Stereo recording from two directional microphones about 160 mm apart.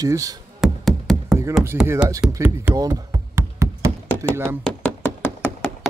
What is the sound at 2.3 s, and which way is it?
Knock, 15° right (ahead or behind).